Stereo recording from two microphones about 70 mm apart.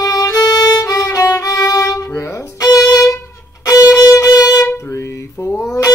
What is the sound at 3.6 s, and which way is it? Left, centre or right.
Music, left.